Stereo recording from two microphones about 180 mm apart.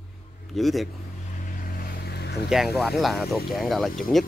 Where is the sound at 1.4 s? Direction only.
55° left (ahead or behind).